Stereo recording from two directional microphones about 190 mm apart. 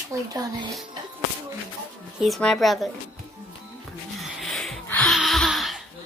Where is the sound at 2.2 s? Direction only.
Centre (ahead or behind).